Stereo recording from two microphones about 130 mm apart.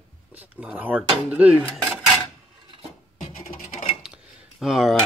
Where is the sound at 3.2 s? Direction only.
80° left.